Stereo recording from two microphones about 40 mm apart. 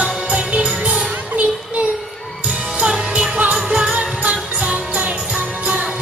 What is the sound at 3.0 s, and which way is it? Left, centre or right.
Music, right.